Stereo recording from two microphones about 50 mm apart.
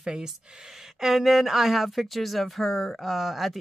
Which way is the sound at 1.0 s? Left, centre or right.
Centre.